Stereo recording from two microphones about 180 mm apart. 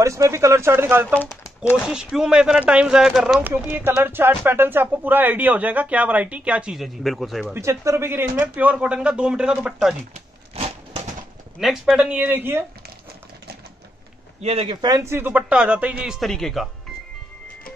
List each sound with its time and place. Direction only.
0.0 s speech: 15° right (ahead or behind)
1.0 s speech: 10° left (ahead or behind)
1.9 s speech: 5° right (ahead or behind)
7.5 s speech: 15° right (ahead or behind)
10.5 s a sound: 35° right (ahead or behind)
11.6 s speech: 5° right (ahead or behind)
14.4 s speech: 35° right (ahead or behind); by 16.6 s centre (ahead or behind)